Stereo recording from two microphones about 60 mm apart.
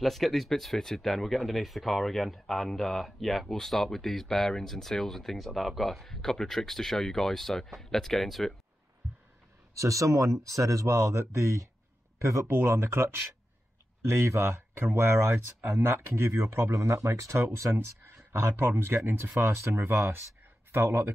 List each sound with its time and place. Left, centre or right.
0.0 s speech: centre
9.8 s speech: right